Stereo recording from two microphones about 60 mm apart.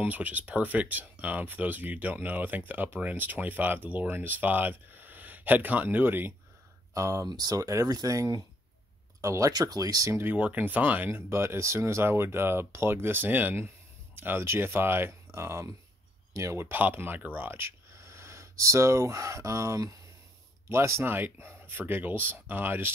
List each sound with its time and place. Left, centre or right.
0.0 s speech: right
6.9 s speech: right
9.2 s speech: right
10.1 s speech: right
10.4 s speech: right
11.1 s speech: right
16.5 s speech: right
20.6 s speech: right
21.1 s speech: right